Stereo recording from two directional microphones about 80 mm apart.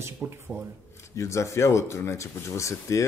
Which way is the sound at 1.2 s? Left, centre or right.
Left.